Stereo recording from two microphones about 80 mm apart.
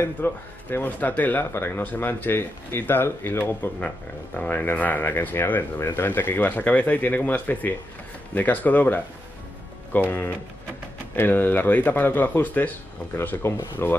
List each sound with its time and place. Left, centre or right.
0.0 s speech: left
3.8 s speech: centre